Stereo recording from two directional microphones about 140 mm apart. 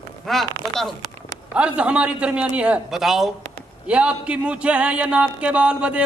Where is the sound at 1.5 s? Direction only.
10° right (ahead or behind).